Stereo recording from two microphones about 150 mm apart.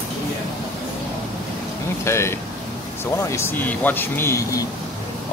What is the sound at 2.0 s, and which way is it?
Speech, 20° left (ahead or behind).